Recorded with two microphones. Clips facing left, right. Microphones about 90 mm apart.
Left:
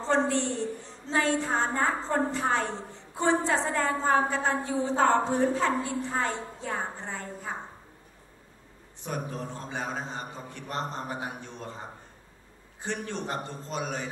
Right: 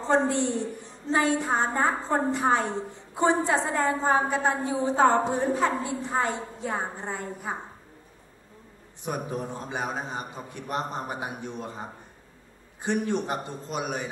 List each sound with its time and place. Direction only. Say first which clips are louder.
0.0 s a woman's voice: right 2 dB; 15° right (ahead or behind)
9.0 s a woman's voice: right 3 dB; 15° right (ahead or behind)
12.8 s a woman's voice: right 6 dB; 15° right (ahead or behind)